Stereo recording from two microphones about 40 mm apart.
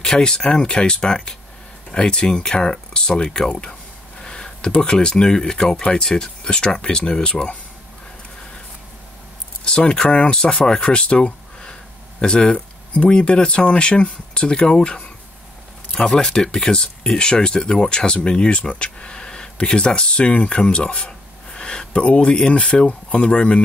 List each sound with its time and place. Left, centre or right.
0.0 s speech: centre
9.7 s speech: left
10.0 s speech: left
12.5 s a sound: left
13.1 s speech: left